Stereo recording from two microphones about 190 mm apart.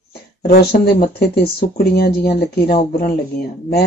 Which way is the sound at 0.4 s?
55° left (ahead or behind).